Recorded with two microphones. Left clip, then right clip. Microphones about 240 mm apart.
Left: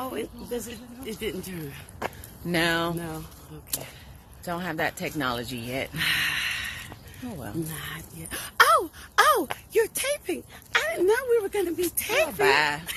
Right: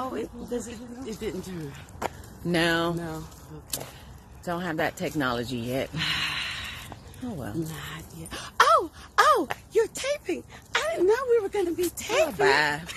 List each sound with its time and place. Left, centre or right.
0.0 s a sound: centre
1.0 s speech: centre
2.5 s speech: centre
3.0 s speech: centre
4.5 s speech: centre
5.9 s a sound: centre
7.7 s speech: centre
12.4 s speech: centre